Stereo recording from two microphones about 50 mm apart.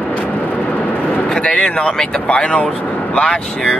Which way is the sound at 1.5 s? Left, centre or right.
Left.